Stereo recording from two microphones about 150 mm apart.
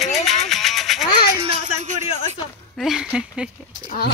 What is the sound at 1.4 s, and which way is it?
Music, 45° right (ahead or behind).